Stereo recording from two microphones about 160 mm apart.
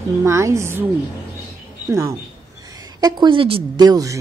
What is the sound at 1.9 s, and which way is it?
Speech, 20° right (ahead or behind).